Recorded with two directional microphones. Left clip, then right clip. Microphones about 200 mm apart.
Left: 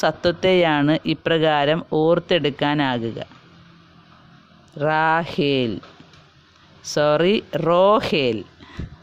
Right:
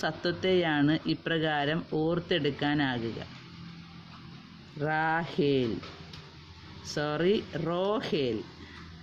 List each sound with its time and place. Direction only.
0.0 s speech: 55° left (ahead or behind)
4.7 s speech: 55° left (ahead or behind)
6.8 s speech: 55° left (ahead or behind)